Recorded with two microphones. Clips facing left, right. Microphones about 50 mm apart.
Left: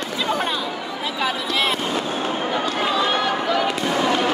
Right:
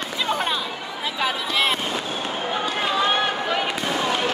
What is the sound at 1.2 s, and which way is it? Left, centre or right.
Speech, right.